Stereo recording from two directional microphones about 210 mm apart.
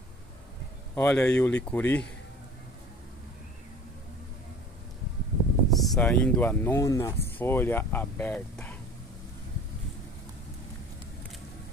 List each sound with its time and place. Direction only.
0.9 s speech: 10° left (ahead or behind)
5.7 s speech: centre (ahead or behind)